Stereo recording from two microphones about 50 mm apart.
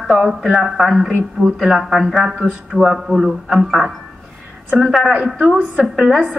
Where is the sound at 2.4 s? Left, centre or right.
Right.